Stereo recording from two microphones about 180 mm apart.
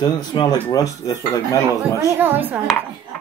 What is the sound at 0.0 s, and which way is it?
Speech, 25° left (ahead or behind).